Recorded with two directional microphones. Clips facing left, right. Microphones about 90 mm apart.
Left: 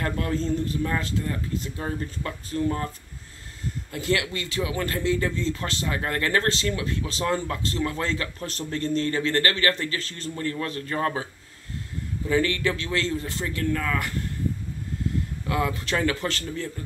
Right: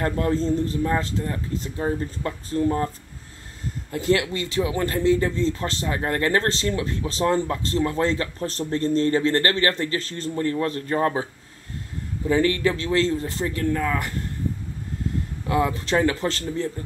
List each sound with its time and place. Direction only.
0.0 s speech: 30° right (ahead or behind)
1.8 s speech: 20° right (ahead or behind)
3.9 s speech: 35° right (ahead or behind)
12.3 s speech: 30° right (ahead or behind)
15.4 s speech: 25° right (ahead or behind)